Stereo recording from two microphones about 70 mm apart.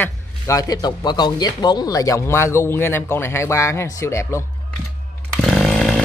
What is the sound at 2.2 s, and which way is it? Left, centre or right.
Speech, left.